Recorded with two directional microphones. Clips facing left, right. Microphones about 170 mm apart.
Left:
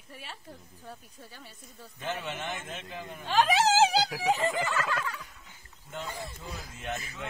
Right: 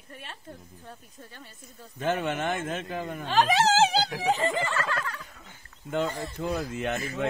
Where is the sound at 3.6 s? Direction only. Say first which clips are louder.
Right 1 dB; 5° left (ahead or behind).